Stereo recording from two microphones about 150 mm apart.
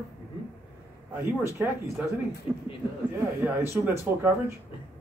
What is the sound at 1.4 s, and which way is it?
Speech, 15° right (ahead or behind).